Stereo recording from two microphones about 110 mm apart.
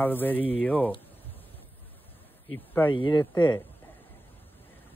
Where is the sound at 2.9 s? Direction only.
50° left (ahead or behind).